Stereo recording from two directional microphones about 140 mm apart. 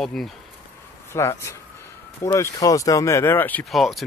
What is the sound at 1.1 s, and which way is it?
Speech, 20° left (ahead or behind).